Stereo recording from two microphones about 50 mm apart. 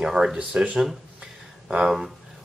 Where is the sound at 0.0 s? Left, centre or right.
Centre.